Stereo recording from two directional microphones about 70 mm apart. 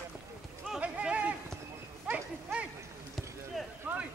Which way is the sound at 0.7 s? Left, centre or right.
Centre.